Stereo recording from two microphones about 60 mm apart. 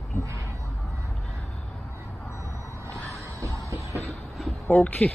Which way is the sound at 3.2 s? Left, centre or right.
Right.